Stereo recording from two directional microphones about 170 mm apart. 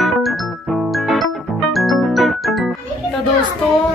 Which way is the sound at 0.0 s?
Centre (ahead or behind).